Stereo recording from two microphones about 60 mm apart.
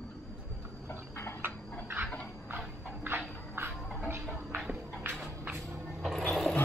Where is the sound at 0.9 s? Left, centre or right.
Left.